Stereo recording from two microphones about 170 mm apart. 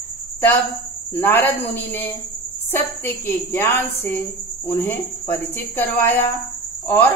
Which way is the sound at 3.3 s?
15° left (ahead or behind).